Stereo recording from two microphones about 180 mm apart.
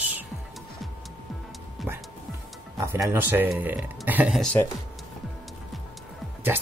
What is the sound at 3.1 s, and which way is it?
Speech, 10° right (ahead or behind).